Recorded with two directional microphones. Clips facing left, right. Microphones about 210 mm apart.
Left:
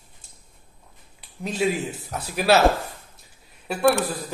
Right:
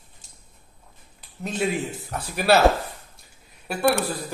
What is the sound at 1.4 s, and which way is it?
Speech, 5° left (ahead or behind).